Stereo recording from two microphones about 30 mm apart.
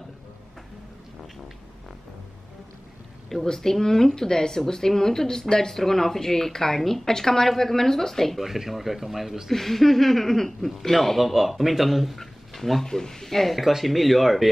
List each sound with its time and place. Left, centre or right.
3.4 s speech: centre
8.4 s speech: centre
9.5 s speech: centre
11.1 s speech: centre
12.2 s a sound: centre
12.8 s speech: centre
13.5 s speech: centre